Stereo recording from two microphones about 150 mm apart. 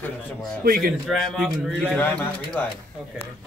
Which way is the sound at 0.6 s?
70° right (ahead or behind).